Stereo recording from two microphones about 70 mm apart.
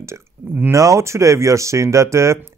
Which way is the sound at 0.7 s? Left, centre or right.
Right.